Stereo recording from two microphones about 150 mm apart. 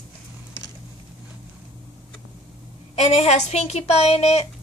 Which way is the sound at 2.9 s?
45° left (ahead or behind).